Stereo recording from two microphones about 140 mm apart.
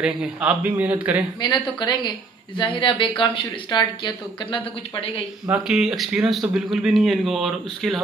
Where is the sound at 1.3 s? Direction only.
30° left (ahead or behind).